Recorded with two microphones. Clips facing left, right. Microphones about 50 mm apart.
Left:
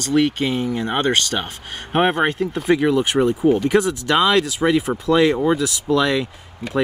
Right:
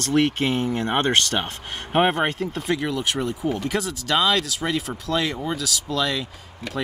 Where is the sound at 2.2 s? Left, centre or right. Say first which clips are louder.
Left 4 dB; centre.